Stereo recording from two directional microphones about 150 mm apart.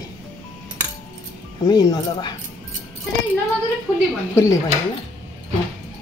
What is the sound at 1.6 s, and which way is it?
Speech, 25° left (ahead or behind).